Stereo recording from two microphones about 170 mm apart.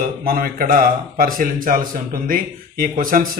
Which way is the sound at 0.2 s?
60° right (ahead or behind).